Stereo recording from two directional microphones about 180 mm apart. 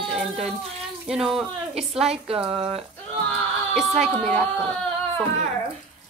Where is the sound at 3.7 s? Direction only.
Centre (ahead or behind).